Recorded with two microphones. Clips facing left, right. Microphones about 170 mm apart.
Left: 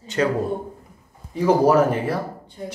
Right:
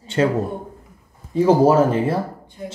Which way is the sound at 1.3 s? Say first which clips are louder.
Right 2 dB; 25° right (ahead or behind).